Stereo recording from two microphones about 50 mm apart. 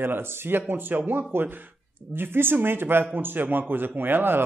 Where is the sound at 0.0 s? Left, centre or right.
Right.